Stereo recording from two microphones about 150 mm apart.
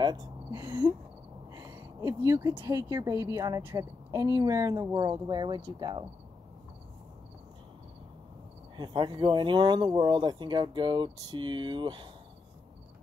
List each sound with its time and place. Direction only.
0.0 s a sound: 25° right (ahead or behind)
1.5 s speech: 20° right (ahead or behind)
8.7 s speech: 30° right (ahead or behind)